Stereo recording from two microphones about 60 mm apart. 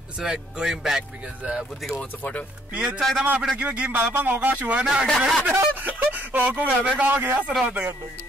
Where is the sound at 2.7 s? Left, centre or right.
Centre.